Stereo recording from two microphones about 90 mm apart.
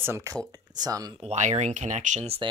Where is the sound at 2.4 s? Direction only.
65° right (ahead or behind).